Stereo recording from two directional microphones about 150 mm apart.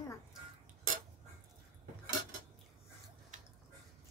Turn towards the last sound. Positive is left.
turn(degrees=-60)  # may be behind; listen again after turning